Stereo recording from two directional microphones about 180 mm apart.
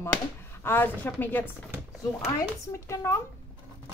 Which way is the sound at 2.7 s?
15° left (ahead or behind).